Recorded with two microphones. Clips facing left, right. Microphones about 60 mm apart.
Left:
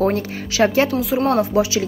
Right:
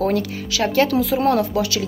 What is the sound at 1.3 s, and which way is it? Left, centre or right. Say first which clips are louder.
Speech: left 1 dB; left.